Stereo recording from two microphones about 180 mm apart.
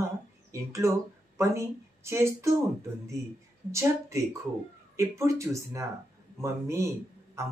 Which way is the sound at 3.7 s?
15° right (ahead or behind).